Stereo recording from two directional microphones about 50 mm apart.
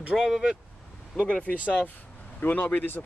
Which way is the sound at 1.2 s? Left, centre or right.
Left.